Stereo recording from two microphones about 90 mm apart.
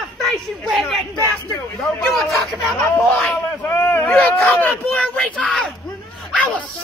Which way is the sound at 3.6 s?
25° left (ahead or behind).